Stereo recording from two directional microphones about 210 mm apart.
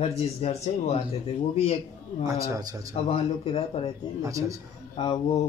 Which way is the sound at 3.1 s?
25° left (ahead or behind).